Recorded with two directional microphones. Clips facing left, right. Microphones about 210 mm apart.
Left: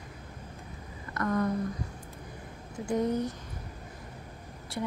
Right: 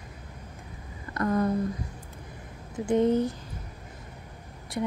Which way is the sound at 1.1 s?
30° right (ahead or behind).